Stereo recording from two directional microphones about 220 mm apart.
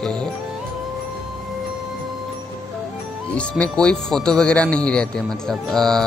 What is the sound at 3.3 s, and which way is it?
Speech, 5° left (ahead or behind).